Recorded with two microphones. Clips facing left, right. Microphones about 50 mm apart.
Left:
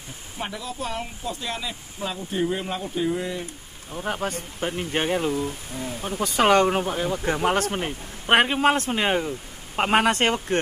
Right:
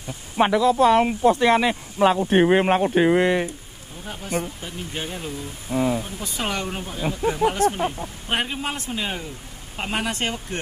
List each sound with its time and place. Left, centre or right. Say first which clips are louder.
0.4 s speech: right 15 dB; right
3.9 s speech: left 1 dB; left
5.7 s speech: right 10 dB; right
6.1 s speech: left 9 dB; left